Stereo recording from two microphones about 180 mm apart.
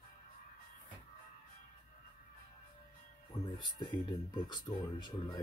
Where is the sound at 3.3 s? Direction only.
15° left (ahead or behind).